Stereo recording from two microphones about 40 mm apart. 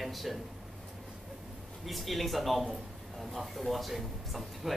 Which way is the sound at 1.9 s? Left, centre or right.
Centre.